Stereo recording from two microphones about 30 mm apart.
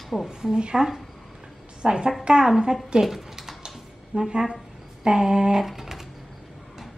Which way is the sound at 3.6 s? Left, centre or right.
Right.